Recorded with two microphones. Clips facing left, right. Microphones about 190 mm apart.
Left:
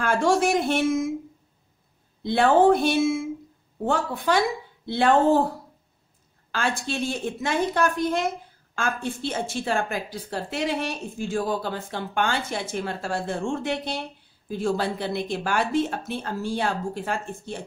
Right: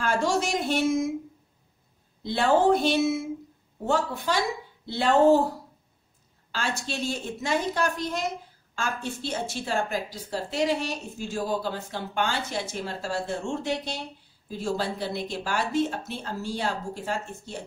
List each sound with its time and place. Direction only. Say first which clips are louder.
0.0 s a man's voice: left 4 dB; 55° left (ahead or behind)
2.2 s a woman's voice: left 4 dB; 55° left (ahead or behind)
6.5 s a woman's voice: left 4 dB; 55° left (ahead or behind)